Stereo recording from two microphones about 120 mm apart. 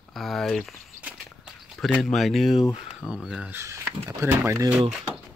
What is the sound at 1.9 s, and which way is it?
Speech, centre (ahead or behind).